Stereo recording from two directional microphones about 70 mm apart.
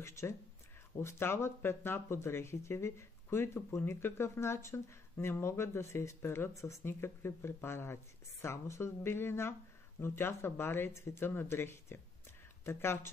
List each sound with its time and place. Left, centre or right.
0.0 s speech: left